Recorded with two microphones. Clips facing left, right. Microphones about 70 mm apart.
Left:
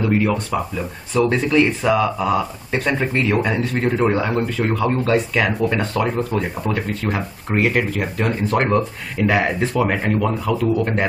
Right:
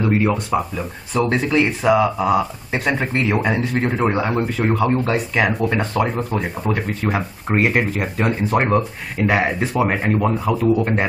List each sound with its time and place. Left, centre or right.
0.2 s speech: centre
1.1 s speech: centre